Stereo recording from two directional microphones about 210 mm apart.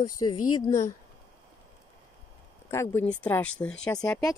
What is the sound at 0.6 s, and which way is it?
Speech, 15° left (ahead or behind).